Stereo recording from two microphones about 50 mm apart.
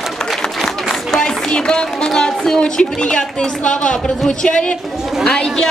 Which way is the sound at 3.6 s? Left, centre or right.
Centre.